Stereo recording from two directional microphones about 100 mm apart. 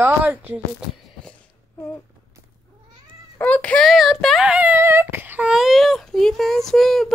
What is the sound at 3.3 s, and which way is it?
Speech, 15° left (ahead or behind).